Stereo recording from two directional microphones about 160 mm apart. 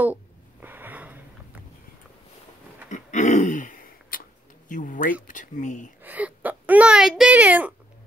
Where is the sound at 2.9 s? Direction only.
50° left (ahead or behind).